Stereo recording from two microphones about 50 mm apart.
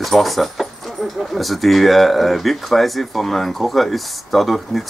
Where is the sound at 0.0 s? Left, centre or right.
Centre.